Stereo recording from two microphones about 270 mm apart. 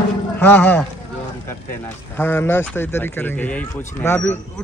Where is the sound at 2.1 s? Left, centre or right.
Centre.